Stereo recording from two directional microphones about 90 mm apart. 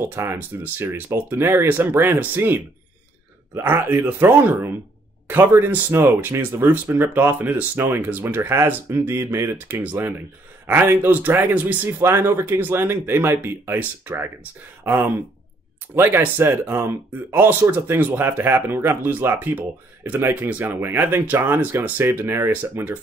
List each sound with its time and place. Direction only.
0.0 s speech: 30° right (ahead or behind)